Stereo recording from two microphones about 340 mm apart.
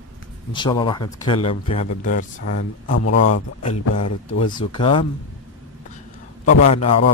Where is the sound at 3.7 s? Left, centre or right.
Left.